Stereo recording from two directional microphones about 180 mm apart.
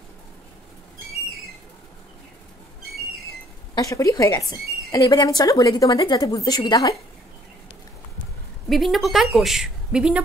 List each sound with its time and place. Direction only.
3.7 s speech: 20° left (ahead or behind)
8.6 s a woman's voice: centre (ahead or behind)